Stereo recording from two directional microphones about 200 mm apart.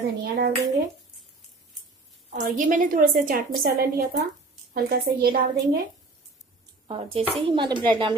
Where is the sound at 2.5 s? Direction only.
40° right (ahead or behind).